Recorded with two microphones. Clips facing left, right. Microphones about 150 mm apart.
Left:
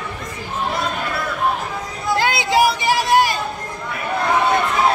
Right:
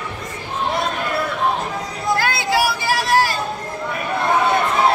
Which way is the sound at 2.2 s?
20° left (ahead or behind).